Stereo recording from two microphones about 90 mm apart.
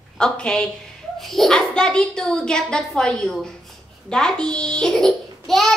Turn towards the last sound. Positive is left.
turn(degrees=5)  # may be behind; listen again after turning